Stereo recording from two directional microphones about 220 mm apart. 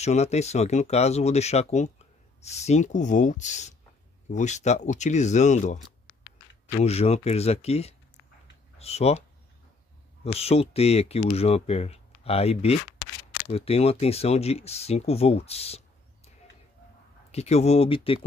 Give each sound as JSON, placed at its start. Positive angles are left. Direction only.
{"t": 0.0, "sound": "speech", "side_deg": 30}
{"t": 6.8, "sound": "speech", "side_deg": 30}
{"t": 10.2, "sound": "speech", "side_deg": 30}
{"t": 17.3, "sound": "speech", "side_deg": 30}